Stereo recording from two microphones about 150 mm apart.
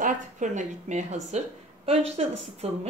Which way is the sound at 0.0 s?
55° right (ahead or behind).